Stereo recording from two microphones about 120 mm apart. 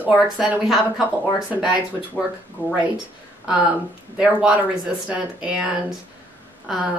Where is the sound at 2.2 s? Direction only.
15° left (ahead or behind).